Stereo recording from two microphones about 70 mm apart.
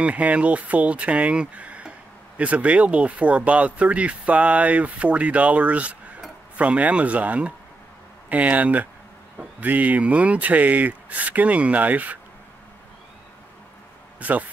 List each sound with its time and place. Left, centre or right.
0.0 s speech: centre
14.2 s speech: right